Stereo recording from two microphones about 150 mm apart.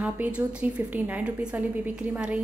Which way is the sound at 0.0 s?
10° right (ahead or behind).